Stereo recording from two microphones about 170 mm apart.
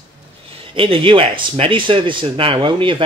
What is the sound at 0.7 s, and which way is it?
Speech, 30° right (ahead or behind).